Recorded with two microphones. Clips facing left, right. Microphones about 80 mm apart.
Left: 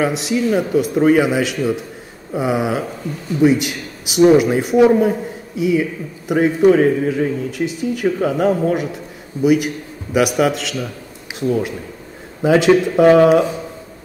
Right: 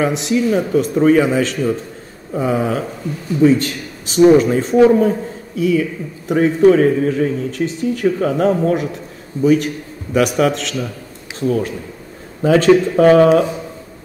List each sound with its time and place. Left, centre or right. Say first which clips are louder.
0.0 s speech: right 1 dB; centre
6.2 s a man's voice: right 1 dB; centre